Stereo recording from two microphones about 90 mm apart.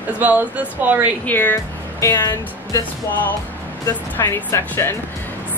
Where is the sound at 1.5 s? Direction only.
30° left (ahead or behind).